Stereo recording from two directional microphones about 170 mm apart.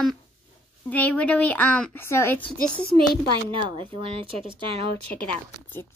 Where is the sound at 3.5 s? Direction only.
30° right (ahead or behind).